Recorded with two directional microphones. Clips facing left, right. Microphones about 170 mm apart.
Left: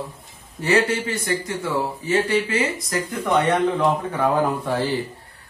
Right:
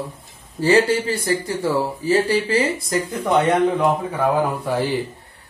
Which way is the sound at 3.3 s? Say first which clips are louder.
Right 2 dB; 10° right (ahead or behind).